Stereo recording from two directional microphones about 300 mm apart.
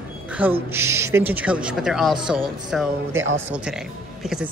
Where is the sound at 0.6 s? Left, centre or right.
Centre.